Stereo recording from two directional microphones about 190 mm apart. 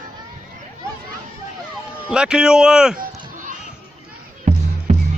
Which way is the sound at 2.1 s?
5° right (ahead or behind).